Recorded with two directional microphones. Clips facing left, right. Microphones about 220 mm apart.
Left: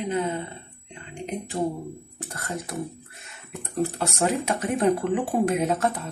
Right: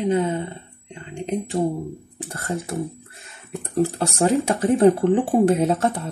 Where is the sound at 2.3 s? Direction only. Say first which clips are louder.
Right 5 dB; 30° right (ahead or behind).